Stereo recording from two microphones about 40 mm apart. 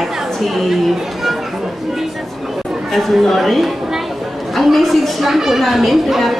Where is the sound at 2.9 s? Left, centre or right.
Centre.